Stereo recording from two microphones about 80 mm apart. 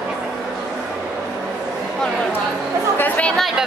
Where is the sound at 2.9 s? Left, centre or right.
Centre.